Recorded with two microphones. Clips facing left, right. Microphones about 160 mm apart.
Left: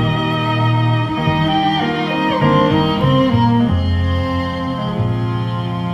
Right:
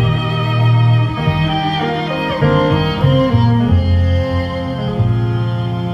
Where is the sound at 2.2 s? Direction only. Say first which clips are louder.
Even; 45° left (ahead or behind).